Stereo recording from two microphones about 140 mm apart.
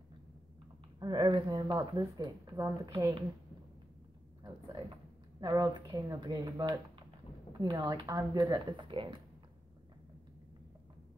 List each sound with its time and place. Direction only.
0.9 s speech: 30° right (ahead or behind)
5.4 s speech: 30° right (ahead or behind)
8.8 s speech: 35° right (ahead or behind)